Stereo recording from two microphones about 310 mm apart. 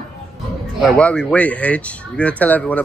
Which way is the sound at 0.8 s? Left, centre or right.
Centre.